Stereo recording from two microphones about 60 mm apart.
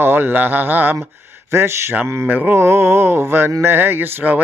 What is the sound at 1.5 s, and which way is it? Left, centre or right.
Speech, right.